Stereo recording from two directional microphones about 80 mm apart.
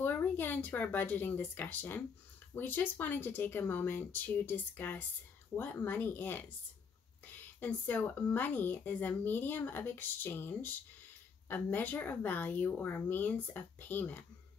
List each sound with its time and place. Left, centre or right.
0.0 s speech: left